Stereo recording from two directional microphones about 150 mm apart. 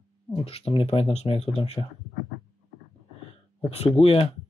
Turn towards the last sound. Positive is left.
turn(degrees=40)  # may be behind; listen again after turning